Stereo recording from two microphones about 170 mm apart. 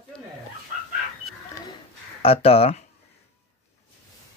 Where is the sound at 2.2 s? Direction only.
35° left (ahead or behind).